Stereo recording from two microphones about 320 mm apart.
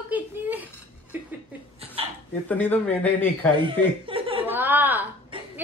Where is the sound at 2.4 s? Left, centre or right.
Centre.